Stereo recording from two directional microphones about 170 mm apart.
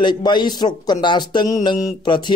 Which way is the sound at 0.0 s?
25° left (ahead or behind).